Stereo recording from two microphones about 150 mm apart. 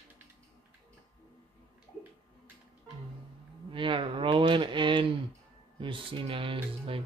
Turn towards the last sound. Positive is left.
turn(degrees=-35)  # may be behind; listen again after turning